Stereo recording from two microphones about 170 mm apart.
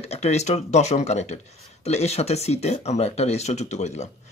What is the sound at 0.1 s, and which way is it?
Speech, 40° left (ahead or behind).